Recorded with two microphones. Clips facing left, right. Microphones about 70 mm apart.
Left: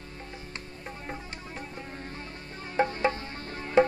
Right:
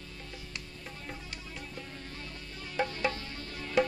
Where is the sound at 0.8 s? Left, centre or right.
Left.